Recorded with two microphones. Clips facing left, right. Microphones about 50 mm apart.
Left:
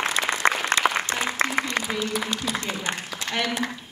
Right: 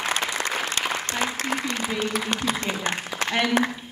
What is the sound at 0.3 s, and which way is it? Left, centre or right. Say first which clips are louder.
Applause: left 4 dB; left.